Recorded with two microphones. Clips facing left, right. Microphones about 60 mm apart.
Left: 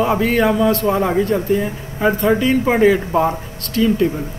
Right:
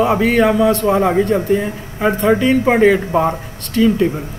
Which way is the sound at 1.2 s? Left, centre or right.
Centre.